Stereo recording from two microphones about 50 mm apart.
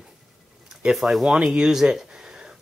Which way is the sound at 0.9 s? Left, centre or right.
Centre.